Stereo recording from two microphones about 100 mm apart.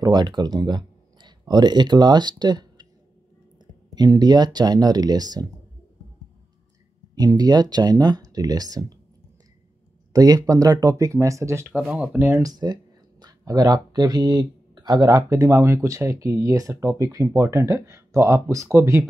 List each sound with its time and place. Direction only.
0.0 s speech: 45° right (ahead or behind)
3.9 s speech: 45° right (ahead or behind)
7.2 s speech: 40° right (ahead or behind)
10.1 s speech: 35° right (ahead or behind)
11.6 s speech: 10° right (ahead or behind)
12.3 s speech: 35° right (ahead or behind)